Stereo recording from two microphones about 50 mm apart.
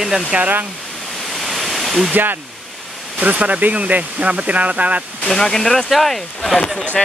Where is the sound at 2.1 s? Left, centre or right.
Right.